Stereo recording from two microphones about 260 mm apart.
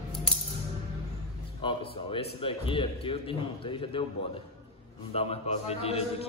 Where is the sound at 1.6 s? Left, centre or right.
Centre.